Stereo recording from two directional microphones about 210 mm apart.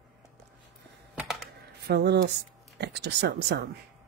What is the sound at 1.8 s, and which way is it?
Speech, 50° right (ahead or behind).